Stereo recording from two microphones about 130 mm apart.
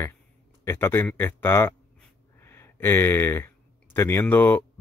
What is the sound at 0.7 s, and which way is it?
Speech, 20° left (ahead or behind).